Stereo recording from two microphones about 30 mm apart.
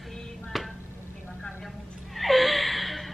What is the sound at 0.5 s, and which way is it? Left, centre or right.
Chopping, centre.